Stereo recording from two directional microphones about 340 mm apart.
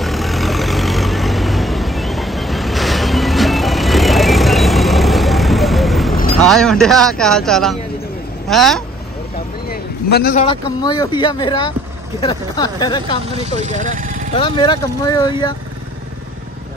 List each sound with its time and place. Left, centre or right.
0.0 s vehicle: centre
6.4 s speech: centre
9.7 s a man's voice: left
13.5 s speech: right
14.3 s speech: centre